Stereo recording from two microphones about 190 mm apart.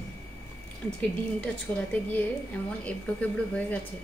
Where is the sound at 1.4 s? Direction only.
5° left (ahead or behind).